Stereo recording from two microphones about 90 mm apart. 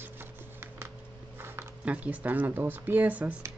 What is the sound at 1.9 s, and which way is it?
Speech, 15° right (ahead or behind).